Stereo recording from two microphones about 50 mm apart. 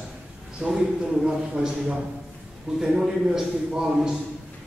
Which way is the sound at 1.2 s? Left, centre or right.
Centre.